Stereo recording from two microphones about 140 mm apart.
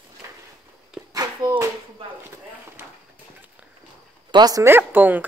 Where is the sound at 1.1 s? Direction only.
30° right (ahead or behind).